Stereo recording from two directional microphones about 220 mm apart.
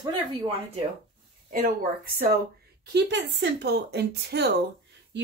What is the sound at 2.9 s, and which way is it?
Speech, 50° right (ahead or behind).